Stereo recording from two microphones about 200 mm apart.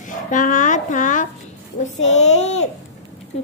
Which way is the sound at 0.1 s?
40° left (ahead or behind).